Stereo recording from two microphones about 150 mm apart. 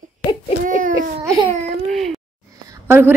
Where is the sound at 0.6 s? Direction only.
65° right (ahead or behind).